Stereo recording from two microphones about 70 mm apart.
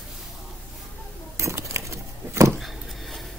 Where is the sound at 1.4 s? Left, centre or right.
Right.